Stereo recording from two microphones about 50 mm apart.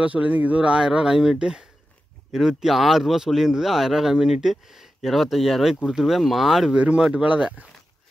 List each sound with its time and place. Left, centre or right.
0.0 s speech: right; by 6.7 s centre
6.7 s speech: right